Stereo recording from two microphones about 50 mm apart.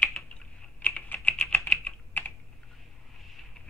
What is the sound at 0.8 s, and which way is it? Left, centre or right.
Typing, left.